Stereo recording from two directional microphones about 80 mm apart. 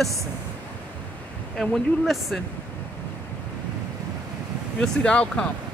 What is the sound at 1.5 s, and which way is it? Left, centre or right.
Speech, centre.